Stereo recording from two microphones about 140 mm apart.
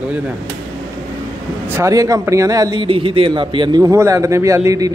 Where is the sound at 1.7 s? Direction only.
20° right (ahead or behind).